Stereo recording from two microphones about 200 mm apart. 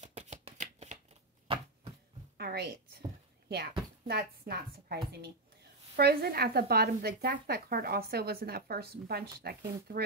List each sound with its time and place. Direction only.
0.0 s shuffling cards: 35° right (ahead or behind)
2.3 s a sound: 50° right (ahead or behind)
3.4 s a woman's voice: 50° right (ahead or behind)